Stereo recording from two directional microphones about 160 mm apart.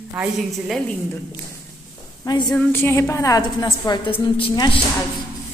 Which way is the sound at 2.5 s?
10° left (ahead or behind).